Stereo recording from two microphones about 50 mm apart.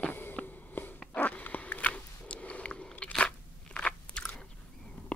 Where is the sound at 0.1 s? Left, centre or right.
Left.